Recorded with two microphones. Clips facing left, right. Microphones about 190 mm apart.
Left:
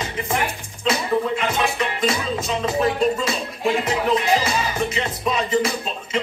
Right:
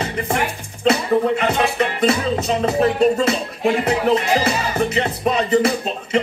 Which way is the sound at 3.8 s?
65° right (ahead or behind).